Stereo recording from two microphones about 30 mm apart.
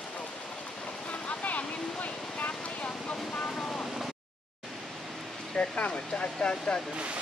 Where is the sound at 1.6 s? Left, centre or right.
Left.